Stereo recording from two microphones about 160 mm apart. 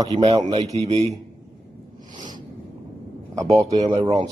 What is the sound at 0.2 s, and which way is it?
Speech, 35° right (ahead or behind).